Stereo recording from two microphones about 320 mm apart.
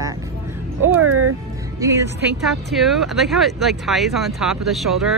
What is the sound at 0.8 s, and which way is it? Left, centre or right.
Speech, right.